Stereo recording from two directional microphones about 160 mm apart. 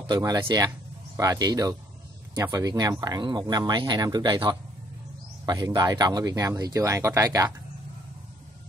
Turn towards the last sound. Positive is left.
turn(degrees=-20)  # may be behind; listen again after turning